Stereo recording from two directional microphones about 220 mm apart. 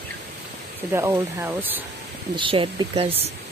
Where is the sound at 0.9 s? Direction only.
10° right (ahead or behind).